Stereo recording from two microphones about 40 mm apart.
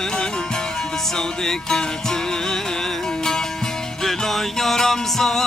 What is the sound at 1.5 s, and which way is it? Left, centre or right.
Music, centre.